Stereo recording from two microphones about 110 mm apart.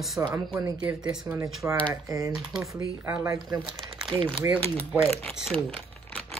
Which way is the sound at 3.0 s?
25° right (ahead or behind).